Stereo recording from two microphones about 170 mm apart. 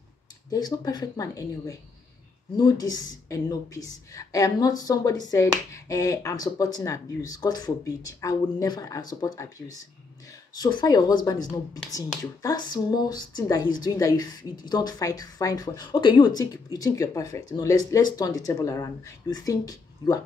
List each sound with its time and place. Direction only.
0.5 s speech: 25° left (ahead or behind)